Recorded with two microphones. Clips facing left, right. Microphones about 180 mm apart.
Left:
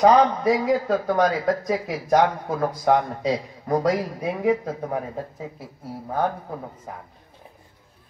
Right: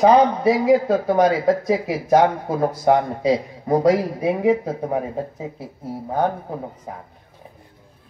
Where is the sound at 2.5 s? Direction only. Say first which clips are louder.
Right 4 dB; 25° right (ahead or behind).